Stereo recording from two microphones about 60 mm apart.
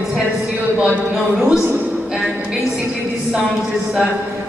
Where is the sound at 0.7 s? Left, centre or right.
Centre.